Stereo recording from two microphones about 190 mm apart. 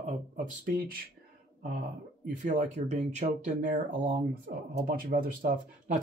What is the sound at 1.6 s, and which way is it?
Speech, 50° right (ahead or behind).